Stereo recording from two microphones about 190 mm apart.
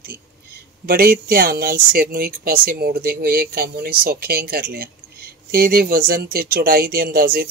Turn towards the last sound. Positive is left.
turn(degrees=-50)  # may be behind; listen again after turning